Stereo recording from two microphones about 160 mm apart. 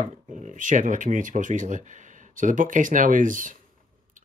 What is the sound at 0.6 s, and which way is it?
Speech, 55° right (ahead or behind).